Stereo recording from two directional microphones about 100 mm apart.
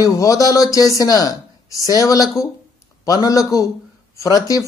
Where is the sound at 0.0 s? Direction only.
35° left (ahead or behind).